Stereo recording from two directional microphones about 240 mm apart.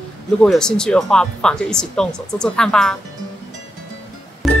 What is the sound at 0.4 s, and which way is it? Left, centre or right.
Speech, centre.